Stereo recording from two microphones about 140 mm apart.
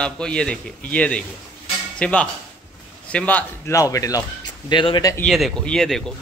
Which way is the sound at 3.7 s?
25° left (ahead or behind).